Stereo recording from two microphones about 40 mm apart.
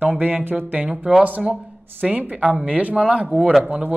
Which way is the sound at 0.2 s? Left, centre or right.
Right.